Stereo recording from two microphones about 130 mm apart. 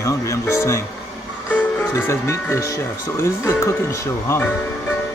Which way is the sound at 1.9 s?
20° left (ahead or behind).